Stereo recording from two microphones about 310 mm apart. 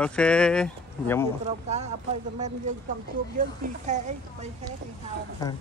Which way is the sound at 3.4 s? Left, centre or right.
Right.